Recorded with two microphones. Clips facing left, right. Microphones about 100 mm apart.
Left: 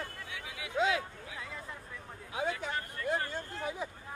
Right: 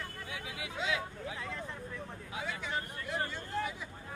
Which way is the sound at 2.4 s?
45° left (ahead or behind).